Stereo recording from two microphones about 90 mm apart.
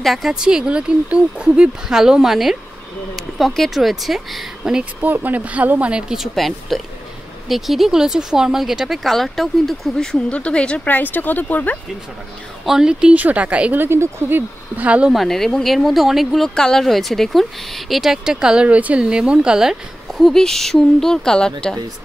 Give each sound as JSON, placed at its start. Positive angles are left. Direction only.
{"t": 0.0, "sound": "speech", "side_deg": 0}
{"t": 5.0, "sound": "speech", "side_deg": -20}
{"t": 10.3, "sound": "speech", "side_deg": 15}
{"t": 12.6, "sound": "speech", "side_deg": -5}
{"t": 14.8, "sound": "speech", "side_deg": -15}
{"t": 15.1, "sound": "speech", "side_deg": 5}